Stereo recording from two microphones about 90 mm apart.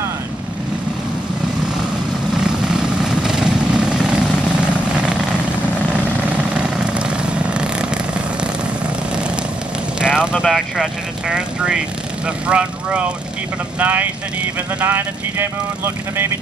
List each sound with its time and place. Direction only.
2.3 s vehicle: 5° right (ahead or behind)
9.9 s vehicle: 10° right (ahead or behind)
10.4 s speech: centre (ahead or behind); by 16.3 s 25° right (ahead or behind)